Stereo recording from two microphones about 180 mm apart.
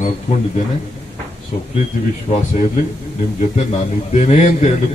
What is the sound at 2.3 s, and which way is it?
Speech, 40° left (ahead or behind).